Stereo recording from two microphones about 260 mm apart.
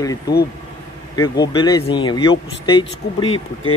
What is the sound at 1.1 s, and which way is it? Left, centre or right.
Speech, centre.